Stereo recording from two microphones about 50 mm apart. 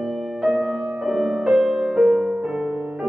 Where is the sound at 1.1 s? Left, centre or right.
Centre.